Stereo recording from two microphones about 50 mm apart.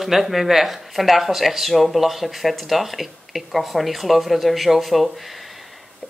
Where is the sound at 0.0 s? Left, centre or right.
Centre.